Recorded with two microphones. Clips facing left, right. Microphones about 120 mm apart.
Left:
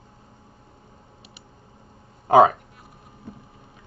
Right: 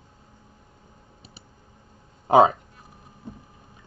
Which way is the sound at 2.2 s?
20° right (ahead or behind).